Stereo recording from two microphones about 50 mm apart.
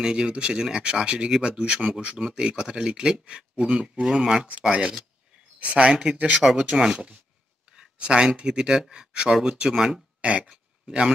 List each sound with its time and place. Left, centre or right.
0.0 s speech: centre
5.6 s speech: right
5.9 s speech: centre
7.7 s a sound: centre
8.4 s speech: centre
9.8 s speech: centre
10.2 s speech: right